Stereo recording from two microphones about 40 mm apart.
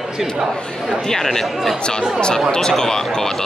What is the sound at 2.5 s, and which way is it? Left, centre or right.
Speech, centre.